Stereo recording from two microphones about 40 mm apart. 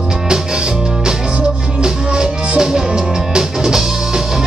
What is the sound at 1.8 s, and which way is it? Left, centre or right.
Music, right.